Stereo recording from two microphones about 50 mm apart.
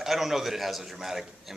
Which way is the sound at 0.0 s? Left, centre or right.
Centre.